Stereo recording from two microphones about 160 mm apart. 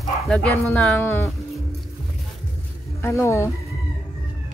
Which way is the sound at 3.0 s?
15° left (ahead or behind).